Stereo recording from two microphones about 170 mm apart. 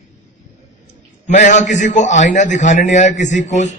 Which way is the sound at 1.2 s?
45° left (ahead or behind).